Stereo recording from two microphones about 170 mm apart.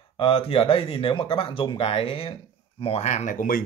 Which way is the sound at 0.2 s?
35° left (ahead or behind).